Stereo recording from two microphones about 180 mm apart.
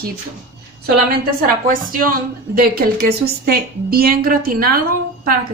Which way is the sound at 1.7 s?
50° right (ahead or behind).